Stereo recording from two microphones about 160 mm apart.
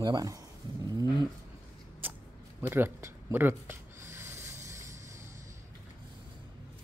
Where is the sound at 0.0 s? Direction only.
25° right (ahead or behind).